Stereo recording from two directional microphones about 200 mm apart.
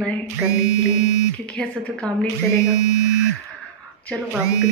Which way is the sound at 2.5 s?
15° left (ahead or behind).